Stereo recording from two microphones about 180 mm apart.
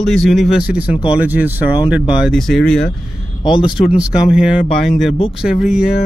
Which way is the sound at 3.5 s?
25° left (ahead or behind).